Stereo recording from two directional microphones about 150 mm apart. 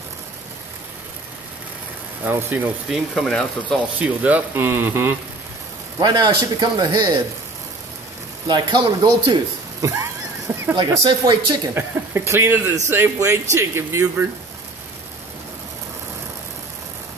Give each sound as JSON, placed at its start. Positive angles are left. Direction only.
{"t": 2.2, "sound": "speech", "side_deg": -15}
{"t": 2.9, "sound": "speech", "side_deg": 0}
{"t": 4.0, "sound": "speech", "side_deg": -10}
{"t": 5.9, "sound": "a man's voice", "side_deg": -25}
{"t": 8.5, "sound": "a man's voice", "side_deg": -30}
{"t": 11.7, "sound": "speech", "side_deg": -15}